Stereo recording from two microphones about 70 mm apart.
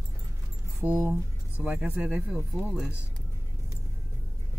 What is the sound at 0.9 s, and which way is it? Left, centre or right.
Speech, right.